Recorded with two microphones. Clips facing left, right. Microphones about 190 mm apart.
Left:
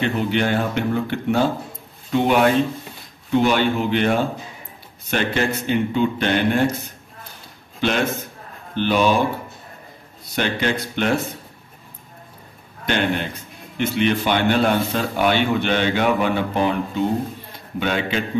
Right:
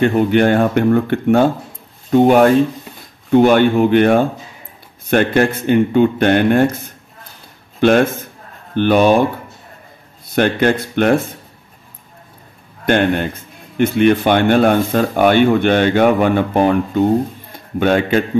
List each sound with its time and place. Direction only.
0.0 s a man's voice: 50° right (ahead or behind)
10.2 s a man's voice: 50° right (ahead or behind)
12.8 s a man's voice: 50° right (ahead or behind)
17.5 s a sound: 50° right (ahead or behind)